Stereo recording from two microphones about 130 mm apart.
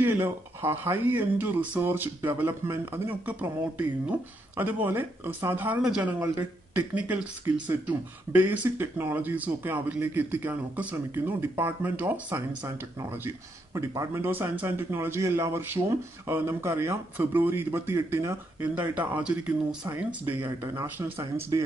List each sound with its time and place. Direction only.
0.0 s speech: 15° right (ahead or behind)